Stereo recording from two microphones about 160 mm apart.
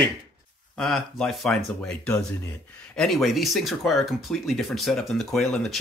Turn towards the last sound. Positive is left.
turn(degrees=0)  # may be behind; listen again after turning